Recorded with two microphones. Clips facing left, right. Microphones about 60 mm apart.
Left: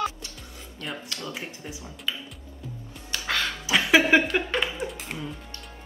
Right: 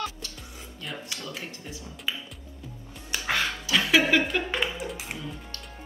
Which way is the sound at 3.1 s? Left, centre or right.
Centre.